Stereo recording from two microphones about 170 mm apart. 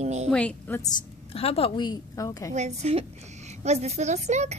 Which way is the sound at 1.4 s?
35° left (ahead or behind).